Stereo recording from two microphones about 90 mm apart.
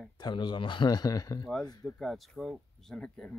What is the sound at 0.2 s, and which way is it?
Speech, 60° left (ahead or behind).